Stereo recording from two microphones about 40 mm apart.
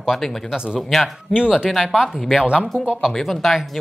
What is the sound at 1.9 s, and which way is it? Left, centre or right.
Speech, centre.